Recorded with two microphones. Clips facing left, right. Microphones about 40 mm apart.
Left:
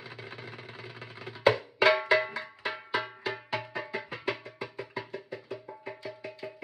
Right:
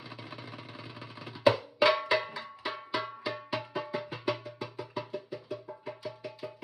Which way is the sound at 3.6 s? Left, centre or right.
Left.